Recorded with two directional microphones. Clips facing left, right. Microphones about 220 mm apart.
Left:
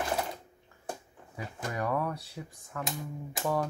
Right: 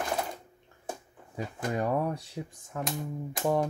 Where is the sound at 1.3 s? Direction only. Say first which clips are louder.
Right 5 dB; 25° right (ahead or behind).